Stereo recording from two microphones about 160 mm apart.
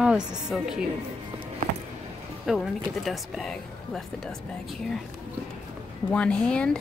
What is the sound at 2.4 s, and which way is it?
Speech, centre (ahead or behind).